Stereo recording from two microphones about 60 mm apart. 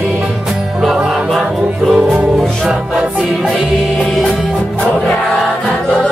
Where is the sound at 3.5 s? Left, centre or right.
Centre.